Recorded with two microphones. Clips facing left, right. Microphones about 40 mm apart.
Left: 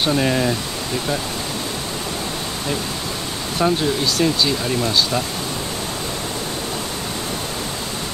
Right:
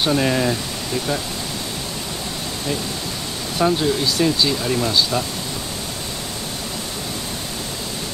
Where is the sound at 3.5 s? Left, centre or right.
Centre.